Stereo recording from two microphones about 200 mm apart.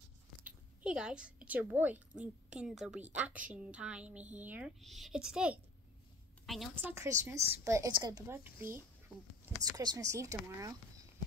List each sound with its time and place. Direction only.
0.4 s a woman's voice: 5° right (ahead or behind)
6.7 s a woman's voice: 10° right (ahead or behind)